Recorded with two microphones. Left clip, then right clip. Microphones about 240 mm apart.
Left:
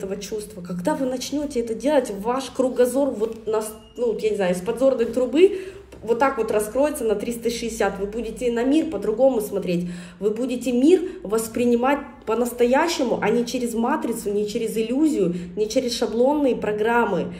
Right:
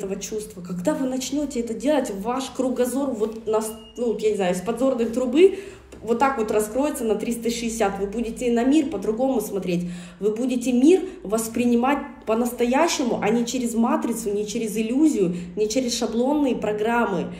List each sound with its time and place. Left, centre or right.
0.8 s a woman's voice: centre
4.2 s a woman's voice: centre